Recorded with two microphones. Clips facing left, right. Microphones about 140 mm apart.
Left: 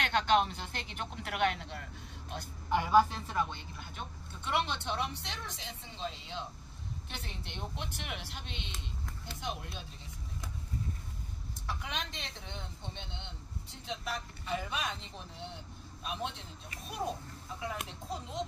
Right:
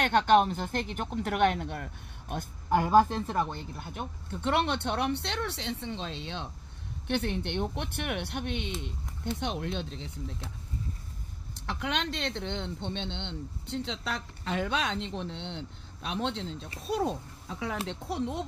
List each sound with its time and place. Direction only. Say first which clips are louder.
0.0 s speech: right 6 dB; 45° right (ahead or behind); by 10.3 s 80° right
11.5 s speech: right 7 dB; 70° right (ahead or behind)